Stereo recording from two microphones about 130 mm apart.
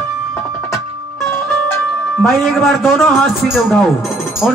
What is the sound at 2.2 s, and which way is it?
A man's voice, centre (ahead or behind).